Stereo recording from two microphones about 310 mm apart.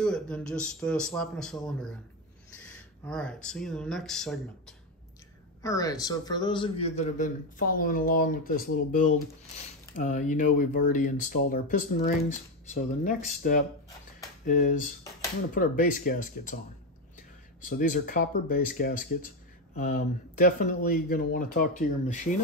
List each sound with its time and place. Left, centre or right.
0.0 s a man's voice: centre; by 16.5 s left
17.6 s speech: left